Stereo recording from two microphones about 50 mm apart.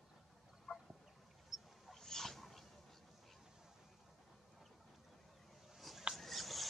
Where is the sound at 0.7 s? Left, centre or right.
Left.